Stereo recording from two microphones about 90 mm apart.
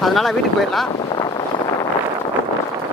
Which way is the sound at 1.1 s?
55° left (ahead or behind).